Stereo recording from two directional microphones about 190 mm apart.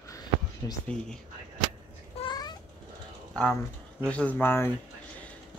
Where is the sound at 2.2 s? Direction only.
20° left (ahead or behind).